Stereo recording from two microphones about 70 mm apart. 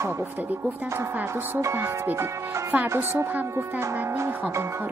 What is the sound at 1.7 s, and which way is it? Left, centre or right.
Speech, right.